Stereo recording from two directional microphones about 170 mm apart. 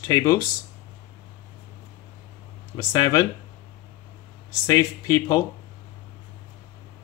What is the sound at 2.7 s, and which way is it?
Speech, 20° left (ahead or behind).